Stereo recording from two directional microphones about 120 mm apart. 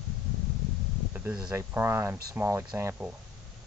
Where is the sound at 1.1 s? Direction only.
10° right (ahead or behind).